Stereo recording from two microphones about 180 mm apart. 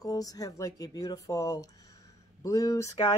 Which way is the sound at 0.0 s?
20° left (ahead or behind).